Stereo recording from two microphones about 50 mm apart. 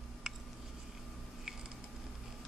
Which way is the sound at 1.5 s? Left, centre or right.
Centre.